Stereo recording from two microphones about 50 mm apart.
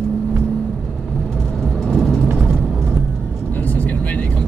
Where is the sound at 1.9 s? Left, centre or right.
Centre.